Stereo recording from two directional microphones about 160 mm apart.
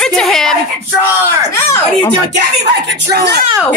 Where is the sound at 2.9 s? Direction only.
90° right.